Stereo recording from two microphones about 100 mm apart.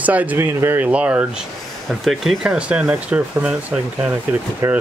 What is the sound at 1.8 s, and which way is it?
Speech, centre (ahead or behind).